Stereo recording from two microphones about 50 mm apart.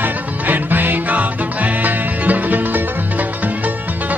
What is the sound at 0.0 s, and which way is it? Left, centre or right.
Music, right.